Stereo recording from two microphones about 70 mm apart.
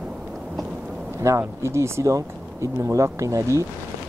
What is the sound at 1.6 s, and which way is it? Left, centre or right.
Speech, right.